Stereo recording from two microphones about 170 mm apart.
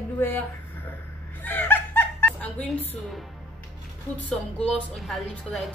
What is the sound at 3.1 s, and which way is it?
Speech, centre (ahead or behind).